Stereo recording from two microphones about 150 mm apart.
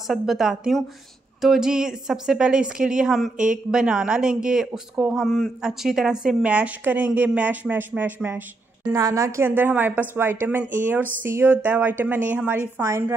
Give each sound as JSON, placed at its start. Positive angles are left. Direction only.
{"t": 0.1, "sound": "speech", "side_deg": -5}
{"t": 8.9, "sound": "a woman's voice", "side_deg": -20}